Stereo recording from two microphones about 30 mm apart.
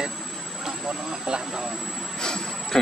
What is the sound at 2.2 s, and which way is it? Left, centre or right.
Vehicle, centre.